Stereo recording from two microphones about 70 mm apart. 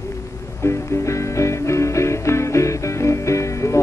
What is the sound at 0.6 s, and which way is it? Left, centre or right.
Music, left.